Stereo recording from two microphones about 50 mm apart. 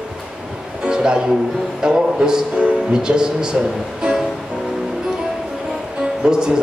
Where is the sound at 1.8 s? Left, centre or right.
Centre.